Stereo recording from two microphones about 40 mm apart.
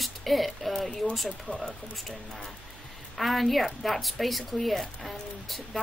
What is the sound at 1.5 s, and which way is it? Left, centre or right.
Speech, left.